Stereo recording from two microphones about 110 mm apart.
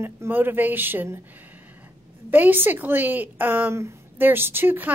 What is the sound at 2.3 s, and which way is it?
A woman's voice, 15° right (ahead or behind).